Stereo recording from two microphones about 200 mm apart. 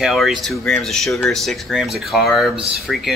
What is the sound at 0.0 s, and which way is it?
Speech, centre (ahead or behind).